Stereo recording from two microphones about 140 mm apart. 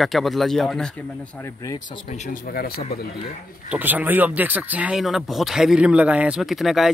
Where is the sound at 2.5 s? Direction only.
90° left.